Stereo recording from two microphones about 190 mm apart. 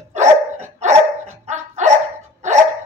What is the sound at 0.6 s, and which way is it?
Dog, 40° right (ahead or behind).